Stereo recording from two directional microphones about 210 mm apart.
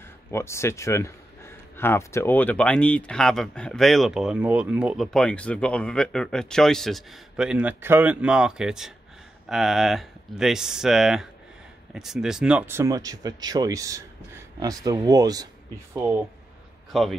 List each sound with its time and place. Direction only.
0.3 s speech: 15° left (ahead or behind); by 15.4 s 15° right (ahead or behind)
16.9 s speech: centre (ahead or behind)